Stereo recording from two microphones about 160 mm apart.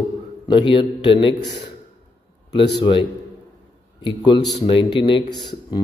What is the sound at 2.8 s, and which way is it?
A man's voice, 35° left (ahead or behind).